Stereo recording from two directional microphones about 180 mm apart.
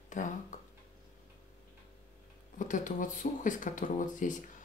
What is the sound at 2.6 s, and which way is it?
Speech, 45° left (ahead or behind).